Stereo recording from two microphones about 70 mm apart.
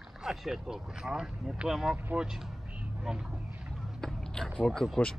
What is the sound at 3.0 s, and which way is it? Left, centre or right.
Vehicle, centre.